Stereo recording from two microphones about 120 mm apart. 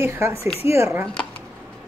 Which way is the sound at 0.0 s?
25° right (ahead or behind).